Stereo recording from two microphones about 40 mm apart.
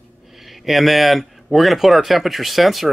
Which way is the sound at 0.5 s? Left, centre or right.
Centre.